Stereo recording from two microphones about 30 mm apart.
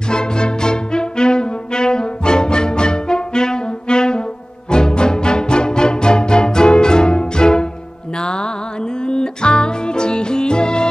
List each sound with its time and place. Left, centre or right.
0.1 s brass instrument: left
4.6 s music: left